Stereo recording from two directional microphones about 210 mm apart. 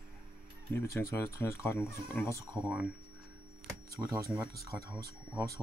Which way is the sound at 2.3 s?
5° right (ahead or behind).